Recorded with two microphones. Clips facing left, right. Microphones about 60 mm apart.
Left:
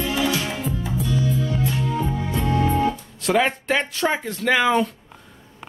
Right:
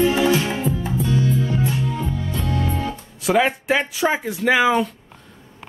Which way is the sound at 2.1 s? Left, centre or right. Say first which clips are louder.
Left 2 dB; left.